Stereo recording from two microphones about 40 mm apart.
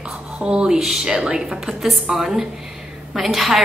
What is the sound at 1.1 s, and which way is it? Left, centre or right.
Speech, right.